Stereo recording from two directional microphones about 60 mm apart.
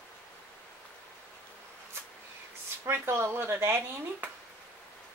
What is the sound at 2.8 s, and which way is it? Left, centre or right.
Speech, right.